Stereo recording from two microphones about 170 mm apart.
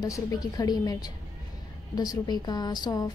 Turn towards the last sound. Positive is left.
turn(degrees=20)  # may be behind; listen again after turning